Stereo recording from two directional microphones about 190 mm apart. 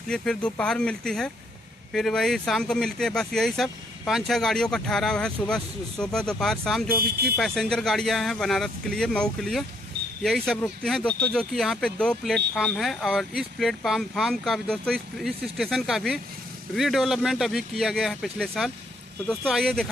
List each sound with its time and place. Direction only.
0.1 s speech: 5° left (ahead or behind)
7.0 s speech: 55° right (ahead or behind)
7.3 s speech: centre (ahead or behind)